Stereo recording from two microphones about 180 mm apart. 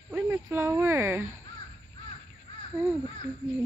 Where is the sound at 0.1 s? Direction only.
15° right (ahead or behind).